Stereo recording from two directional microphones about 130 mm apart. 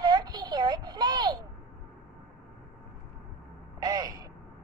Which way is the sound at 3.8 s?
30° right (ahead or behind).